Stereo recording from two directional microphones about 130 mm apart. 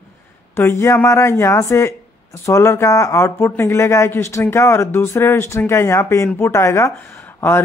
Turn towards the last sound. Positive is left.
turn(degrees=15)  # may be behind; listen again after turning